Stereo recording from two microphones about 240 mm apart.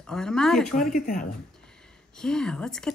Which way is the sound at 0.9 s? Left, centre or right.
Left.